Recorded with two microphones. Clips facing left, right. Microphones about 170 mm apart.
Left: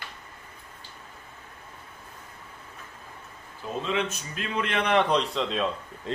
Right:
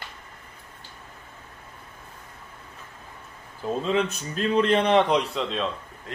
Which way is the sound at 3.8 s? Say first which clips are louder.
Right 3 dB; 35° right (ahead or behind).